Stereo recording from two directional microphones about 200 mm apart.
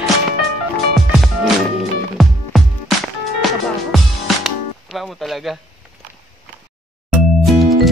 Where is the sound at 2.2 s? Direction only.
Centre (ahead or behind).